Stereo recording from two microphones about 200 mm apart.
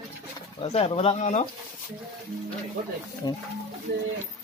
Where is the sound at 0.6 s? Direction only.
30° left (ahead or behind).